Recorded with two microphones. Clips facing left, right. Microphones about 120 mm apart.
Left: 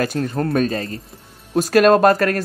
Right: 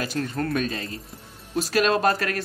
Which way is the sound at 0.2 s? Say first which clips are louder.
Left 3 dB; 30° left (ahead or behind).